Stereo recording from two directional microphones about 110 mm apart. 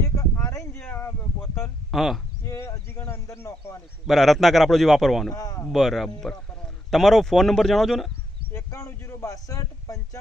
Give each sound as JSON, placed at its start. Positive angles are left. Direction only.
{"t": 0.0, "sound": "a sound", "side_deg": 25}
{"t": 1.9, "sound": "speech", "side_deg": 0}
{"t": 2.4, "sound": "a sound", "side_deg": 25}
{"t": 4.1, "sound": "a man's voice", "side_deg": 0}
{"t": 5.3, "sound": "speech", "side_deg": 35}
{"t": 5.7, "sound": "a man's voice", "side_deg": 0}
{"t": 8.5, "sound": "speech", "side_deg": 25}